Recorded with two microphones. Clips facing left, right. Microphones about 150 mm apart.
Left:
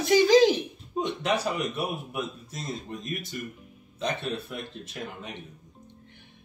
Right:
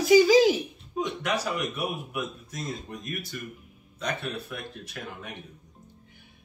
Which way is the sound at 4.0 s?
25° left (ahead or behind).